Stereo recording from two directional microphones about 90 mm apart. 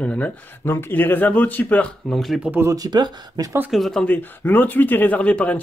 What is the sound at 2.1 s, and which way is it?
Speech, centre (ahead or behind).